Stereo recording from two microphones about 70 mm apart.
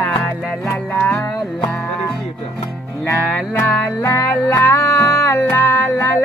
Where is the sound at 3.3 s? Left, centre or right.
Left.